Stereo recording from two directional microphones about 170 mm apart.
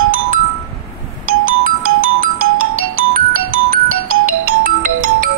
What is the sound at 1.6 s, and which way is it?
Music, 55° right (ahead or behind).